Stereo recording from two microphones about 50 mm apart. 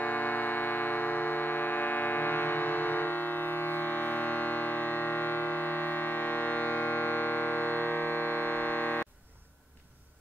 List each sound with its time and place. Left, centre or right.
0.0 s music: left